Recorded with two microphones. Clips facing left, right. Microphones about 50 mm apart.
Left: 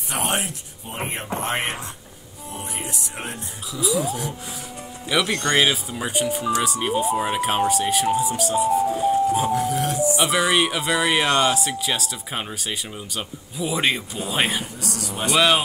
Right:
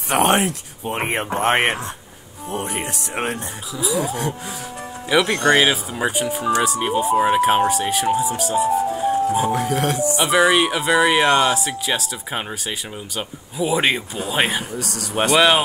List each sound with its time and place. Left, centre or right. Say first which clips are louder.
0.1 s speech: right 9 dB; right
3.7 s speech: right 1 dB; centre
4.0 s speech: right 3 dB; right
5.3 s speech: right 3 dB; centre
6.1 s speech: even; centre
9.5 s speech: right 2 dB; right
10.1 s speech: right 6 dB; centre
14.8 s speech: right 6 dB; right
15.3 s speech: right 3 dB; right